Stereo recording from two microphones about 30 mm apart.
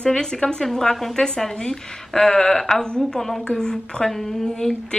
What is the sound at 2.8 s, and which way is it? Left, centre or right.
A woman's voice, left.